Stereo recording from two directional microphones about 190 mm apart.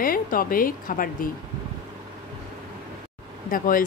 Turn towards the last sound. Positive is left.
turn(degrees=45)  # may be behind; listen again after turning